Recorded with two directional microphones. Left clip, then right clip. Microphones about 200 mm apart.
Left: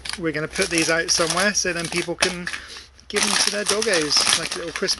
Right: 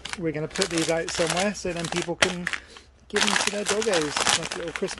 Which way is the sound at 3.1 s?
5° right (ahead or behind).